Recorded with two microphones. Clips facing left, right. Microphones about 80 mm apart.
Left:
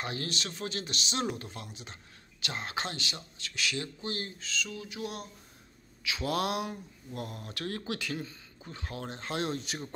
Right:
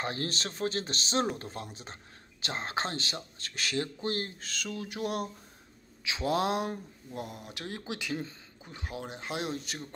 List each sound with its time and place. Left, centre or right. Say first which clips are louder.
0.0 s speech: right 2 dB; right
6.0 s mantra: right 2 dB; right
7.2 s speech: even; centre